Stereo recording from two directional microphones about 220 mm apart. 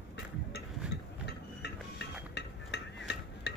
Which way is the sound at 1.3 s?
50° left (ahead or behind).